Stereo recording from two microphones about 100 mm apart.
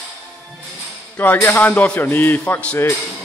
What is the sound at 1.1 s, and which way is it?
A man's voice, 20° left (ahead or behind).